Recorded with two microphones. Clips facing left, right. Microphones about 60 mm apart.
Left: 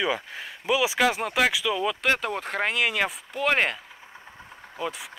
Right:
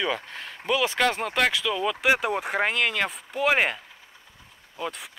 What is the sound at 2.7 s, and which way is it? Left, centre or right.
Speech, centre.